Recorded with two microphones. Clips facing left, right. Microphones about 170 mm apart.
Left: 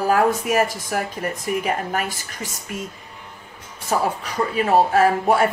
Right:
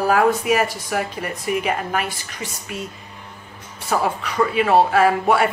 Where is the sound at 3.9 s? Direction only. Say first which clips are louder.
Right 1 dB; 40° left (ahead or behind).